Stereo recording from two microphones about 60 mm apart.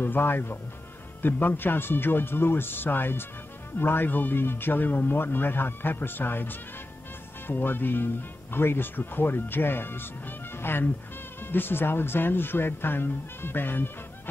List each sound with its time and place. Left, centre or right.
0.0 s speech: left